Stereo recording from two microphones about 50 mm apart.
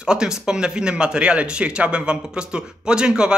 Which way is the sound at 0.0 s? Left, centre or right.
Centre.